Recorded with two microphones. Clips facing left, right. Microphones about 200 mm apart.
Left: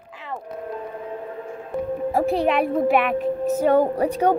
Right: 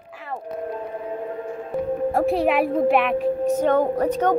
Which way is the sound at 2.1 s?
Centre (ahead or behind).